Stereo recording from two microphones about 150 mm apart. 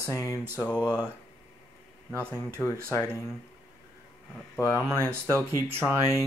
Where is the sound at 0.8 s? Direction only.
15° right (ahead or behind).